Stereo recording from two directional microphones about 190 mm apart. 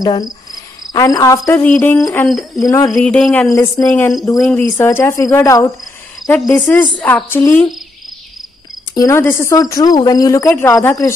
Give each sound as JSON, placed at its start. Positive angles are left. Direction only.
{"t": 0.0, "sound": "cricket", "side_deg": 20}
{"t": 2.2, "sound": "speech", "side_deg": 0}
{"t": 2.6, "sound": "a woman's voice", "side_deg": 20}
{"t": 3.0, "sound": "speech", "side_deg": 5}
{"t": 3.4, "sound": "a woman's voice", "side_deg": 20}
{"t": 4.4, "sound": "a woman's voice", "side_deg": 5}
{"t": 8.9, "sound": "a woman's voice", "side_deg": 15}